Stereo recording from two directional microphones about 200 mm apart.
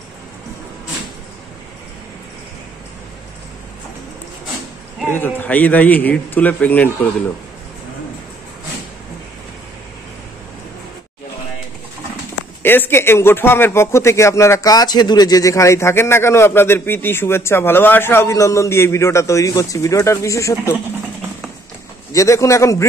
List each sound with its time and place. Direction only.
5.1 s speech: 10° left (ahead or behind)
12.6 s speech: 10° left (ahead or behind)
22.1 s speech: 15° left (ahead or behind)